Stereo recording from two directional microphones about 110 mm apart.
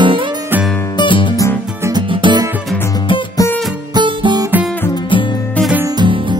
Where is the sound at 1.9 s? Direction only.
50° right (ahead or behind).